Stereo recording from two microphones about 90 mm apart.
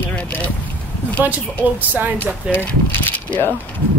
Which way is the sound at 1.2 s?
20° right (ahead or behind).